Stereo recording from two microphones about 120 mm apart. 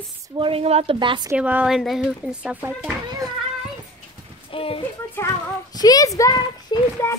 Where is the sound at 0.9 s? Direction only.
40° right (ahead or behind).